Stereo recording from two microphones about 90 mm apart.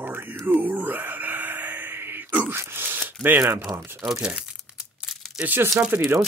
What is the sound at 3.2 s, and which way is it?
Speech, 20° right (ahead or behind).